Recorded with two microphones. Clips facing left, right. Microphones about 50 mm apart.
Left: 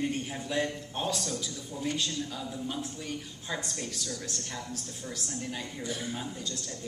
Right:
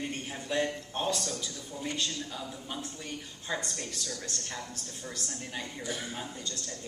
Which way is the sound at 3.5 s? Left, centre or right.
Centre.